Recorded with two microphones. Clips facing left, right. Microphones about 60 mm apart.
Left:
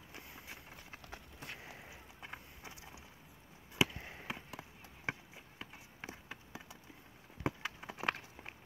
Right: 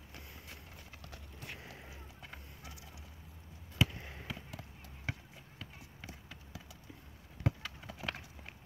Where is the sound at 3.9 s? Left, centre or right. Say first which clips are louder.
Even; centre.